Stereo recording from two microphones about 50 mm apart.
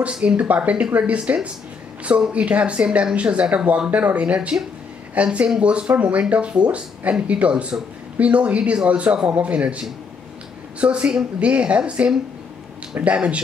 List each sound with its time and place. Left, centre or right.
0.0 s a man's voice: right